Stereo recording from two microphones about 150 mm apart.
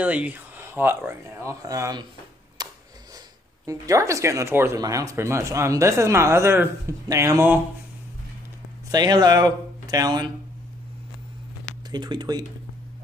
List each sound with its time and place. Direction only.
0.0 s speech: 10° right (ahead or behind)
2.6 s a sound: 25° right (ahead or behind)
3.6 s speech: 20° right (ahead or behind)
8.9 s speech: 25° right (ahead or behind)
11.9 s speech: 30° right (ahead or behind)